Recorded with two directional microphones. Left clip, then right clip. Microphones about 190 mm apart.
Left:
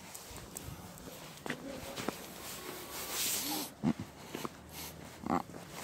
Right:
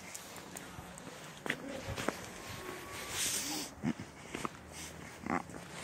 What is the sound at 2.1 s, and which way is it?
Walk, 15° right (ahead or behind).